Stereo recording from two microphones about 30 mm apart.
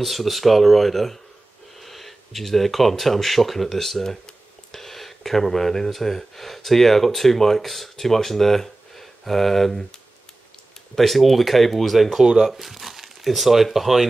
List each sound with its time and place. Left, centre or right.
0.0 s speech: centre
11.0 s speech: centre